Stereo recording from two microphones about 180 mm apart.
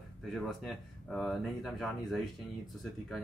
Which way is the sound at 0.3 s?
Centre (ahead or behind).